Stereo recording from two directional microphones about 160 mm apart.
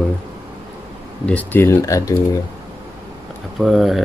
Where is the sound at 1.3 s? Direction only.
10° left (ahead or behind).